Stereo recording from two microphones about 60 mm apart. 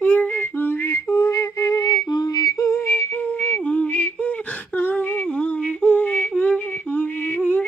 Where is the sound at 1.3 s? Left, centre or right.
Left.